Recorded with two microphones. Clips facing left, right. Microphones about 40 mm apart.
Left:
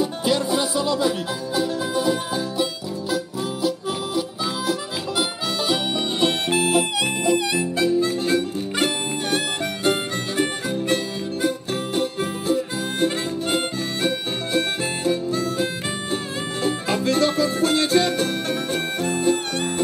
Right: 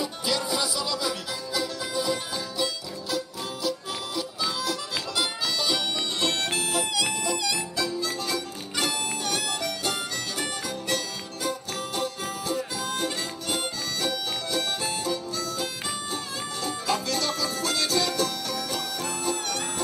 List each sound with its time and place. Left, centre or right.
0.0 s music: left
4.6 s music: centre
9.8 s harmonica: left
14.0 s music: left